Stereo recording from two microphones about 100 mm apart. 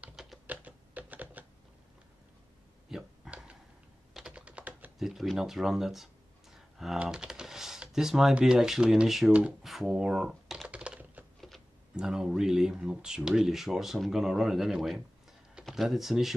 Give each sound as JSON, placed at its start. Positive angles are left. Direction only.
{"t": 0.1, "sound": "typing", "side_deg": -5}
{"t": 0.5, "sound": "typing", "side_deg": -15}
{"t": 2.9, "sound": "a sound", "side_deg": -5}
{"t": 3.3, "sound": "tick-tock", "side_deg": -10}
{"t": 4.1, "sound": "typing", "side_deg": -10}
{"t": 4.9, "sound": "speech", "side_deg": 0}
{"t": 6.5, "sound": "a sound", "side_deg": 0}
{"t": 7.0, "sound": "speech", "side_deg": -5}
{"t": 9.7, "sound": "computer keyboard", "side_deg": 0}
{"t": 11.9, "sound": "speech", "side_deg": -5}